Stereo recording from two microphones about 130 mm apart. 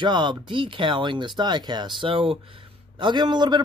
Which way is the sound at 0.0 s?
35° right (ahead or behind).